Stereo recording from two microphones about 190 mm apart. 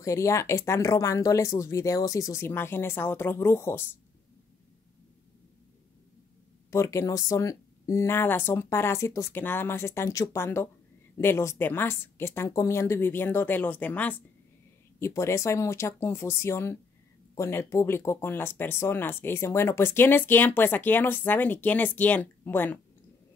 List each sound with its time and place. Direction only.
0.0 s speech: 15° left (ahead or behind)
6.7 s speech: 15° left (ahead or behind)